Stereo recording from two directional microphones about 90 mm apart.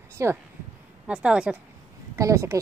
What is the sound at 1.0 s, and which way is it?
Speech, 10° right (ahead or behind).